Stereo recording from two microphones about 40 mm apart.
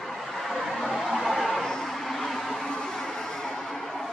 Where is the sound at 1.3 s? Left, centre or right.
Centre.